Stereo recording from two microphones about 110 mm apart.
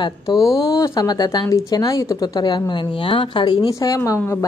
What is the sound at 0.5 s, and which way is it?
A woman's voice, 30° left (ahead or behind).